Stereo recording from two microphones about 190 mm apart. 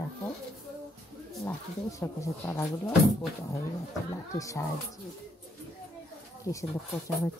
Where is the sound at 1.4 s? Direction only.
15° left (ahead or behind).